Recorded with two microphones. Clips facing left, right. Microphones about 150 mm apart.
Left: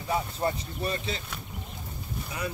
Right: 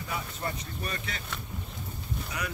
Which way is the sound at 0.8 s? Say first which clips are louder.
Left 7 dB; 25° left (ahead or behind).